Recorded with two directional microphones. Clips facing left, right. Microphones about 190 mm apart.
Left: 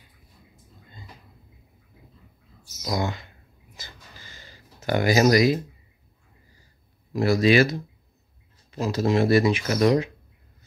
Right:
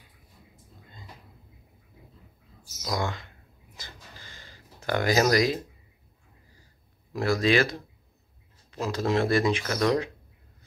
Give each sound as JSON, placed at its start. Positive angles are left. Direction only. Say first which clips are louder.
{"t": 2.8, "sound": "speech", "louder": "left 3 dB", "side_deg": 15}
{"t": 4.8, "sound": "speech", "louder": "left 4 dB", "side_deg": 10}
{"t": 7.1, "sound": "speech", "louder": "left 4 dB", "side_deg": 10}
{"t": 8.7, "sound": "speech", "louder": "left 4 dB", "side_deg": 5}